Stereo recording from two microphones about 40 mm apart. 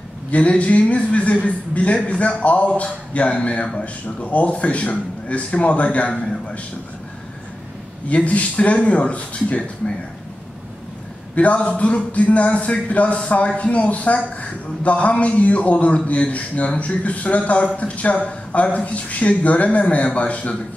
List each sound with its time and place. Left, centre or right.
0.3 s speech: left
8.1 s speech: left
11.3 s speech: left